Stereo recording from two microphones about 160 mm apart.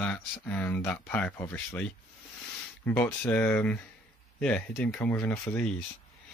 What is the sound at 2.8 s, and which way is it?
Speech, 15° left (ahead or behind).